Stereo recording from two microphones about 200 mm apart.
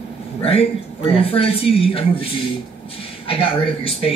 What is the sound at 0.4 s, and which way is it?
Speech, 30° left (ahead or behind).